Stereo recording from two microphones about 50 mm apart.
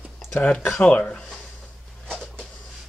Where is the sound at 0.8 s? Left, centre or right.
Left.